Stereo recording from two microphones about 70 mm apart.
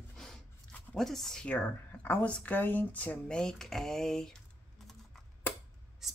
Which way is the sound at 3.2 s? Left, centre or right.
Centre.